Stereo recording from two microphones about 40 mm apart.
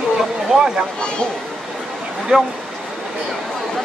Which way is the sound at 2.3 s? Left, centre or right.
Centre.